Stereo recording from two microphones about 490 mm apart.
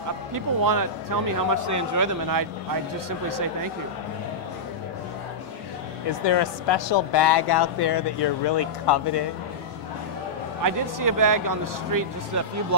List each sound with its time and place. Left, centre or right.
0.3 s speech: right
6.0 s speech: left
10.6 s speech: right